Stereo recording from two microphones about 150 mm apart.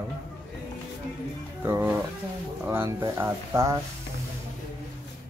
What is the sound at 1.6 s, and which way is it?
Speech, 15° right (ahead or behind).